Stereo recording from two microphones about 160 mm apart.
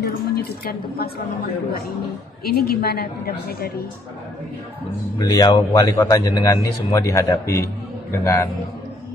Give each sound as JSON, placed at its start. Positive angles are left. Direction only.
{"t": 0.0, "sound": "a woman's voice", "side_deg": 75}
{"t": 2.4, "sound": "a woman's voice", "side_deg": 70}
{"t": 5.2, "sound": "a man's voice", "side_deg": 25}